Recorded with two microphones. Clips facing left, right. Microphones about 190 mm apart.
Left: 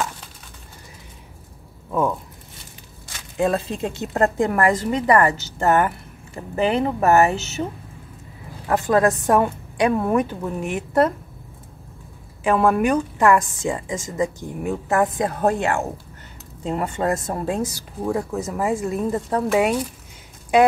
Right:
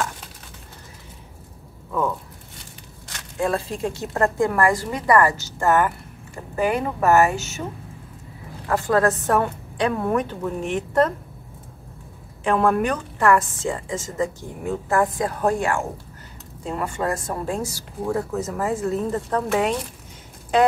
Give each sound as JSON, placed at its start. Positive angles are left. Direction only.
{"t": 3.3, "sound": "speech", "side_deg": 20}
{"t": 8.6, "sound": "a woman's voice", "side_deg": 20}
{"t": 12.4, "sound": "a woman's voice", "side_deg": 5}